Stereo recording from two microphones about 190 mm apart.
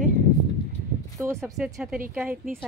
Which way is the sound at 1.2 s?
15° right (ahead or behind).